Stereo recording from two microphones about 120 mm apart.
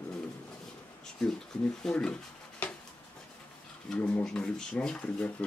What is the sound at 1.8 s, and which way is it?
Speech, 5° left (ahead or behind).